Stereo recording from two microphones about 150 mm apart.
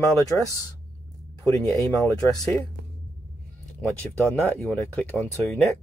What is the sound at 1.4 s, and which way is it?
Speech, 20° left (ahead or behind).